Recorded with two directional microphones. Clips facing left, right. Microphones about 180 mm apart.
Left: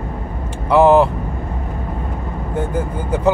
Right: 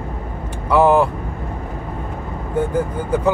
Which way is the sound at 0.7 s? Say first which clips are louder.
Left 3 dB; 25° left (ahead or behind).